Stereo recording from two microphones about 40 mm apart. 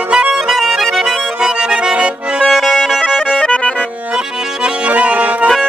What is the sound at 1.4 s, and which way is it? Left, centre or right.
Accordion, centre.